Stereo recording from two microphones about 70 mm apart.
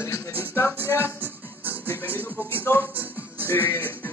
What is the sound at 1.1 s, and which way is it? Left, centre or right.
Music, right.